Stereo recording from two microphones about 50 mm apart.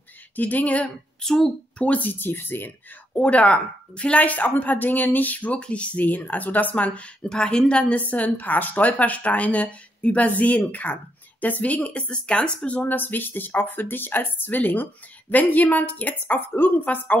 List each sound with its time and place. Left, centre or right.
0.4 s speech: left
1.2 s speech: centre
1.8 s speech: left
3.2 s speech: left
7.2 s speech: centre
8.0 s speech: left
12.8 s speech: left